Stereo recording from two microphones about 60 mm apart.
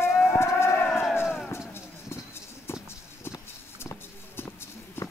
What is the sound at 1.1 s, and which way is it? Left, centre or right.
Run, left.